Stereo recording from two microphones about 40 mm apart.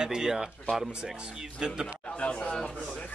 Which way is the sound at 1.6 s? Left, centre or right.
Right.